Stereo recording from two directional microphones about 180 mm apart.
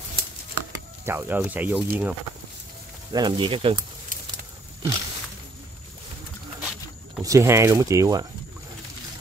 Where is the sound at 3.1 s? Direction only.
25° right (ahead or behind).